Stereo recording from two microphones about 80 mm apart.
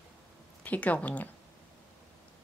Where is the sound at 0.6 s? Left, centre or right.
Centre.